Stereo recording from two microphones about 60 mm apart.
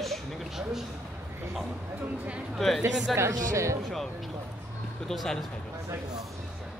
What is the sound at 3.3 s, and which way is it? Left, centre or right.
Speech, right.